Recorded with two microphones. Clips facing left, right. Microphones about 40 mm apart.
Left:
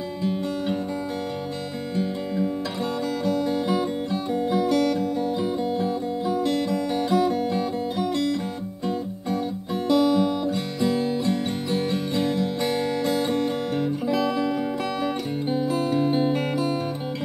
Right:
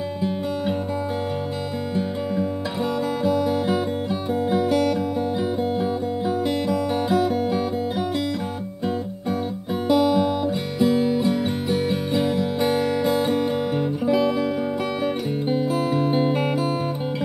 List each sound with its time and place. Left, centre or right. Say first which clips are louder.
0.2 s music: even; centre
2.0 s music: even; centre
8.8 s guitar: right 2 dB; centre
15.5 s music: right 1 dB; centre